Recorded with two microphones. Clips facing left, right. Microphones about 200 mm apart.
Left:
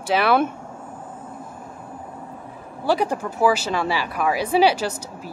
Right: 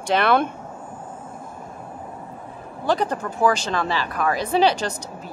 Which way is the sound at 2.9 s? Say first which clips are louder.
Left 1 dB; 10° left (ahead or behind).